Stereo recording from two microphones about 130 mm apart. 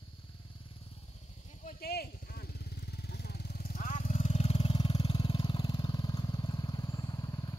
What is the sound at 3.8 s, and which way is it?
Vehicle, 85° left.